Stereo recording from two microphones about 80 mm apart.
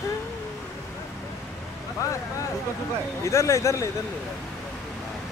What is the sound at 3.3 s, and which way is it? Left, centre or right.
Speech, left.